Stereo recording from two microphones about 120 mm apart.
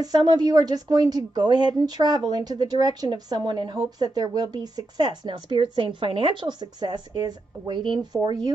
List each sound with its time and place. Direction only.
0.0 s speech: 35° right (ahead or behind)